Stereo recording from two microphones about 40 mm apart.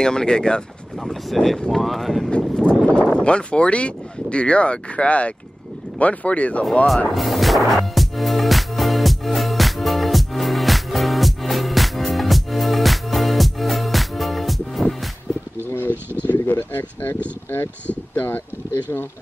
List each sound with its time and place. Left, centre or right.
0.0 s speech: centre
1.0 s speech: centre
2.6 s speech: left
7.2 s music: centre
15.9 s a sound: right
16.3 s speech: left